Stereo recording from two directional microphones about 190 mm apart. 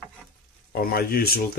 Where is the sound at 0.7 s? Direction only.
50° left (ahead or behind).